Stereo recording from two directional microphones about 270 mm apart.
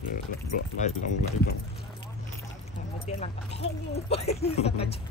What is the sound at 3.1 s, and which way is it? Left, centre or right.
Speech, left.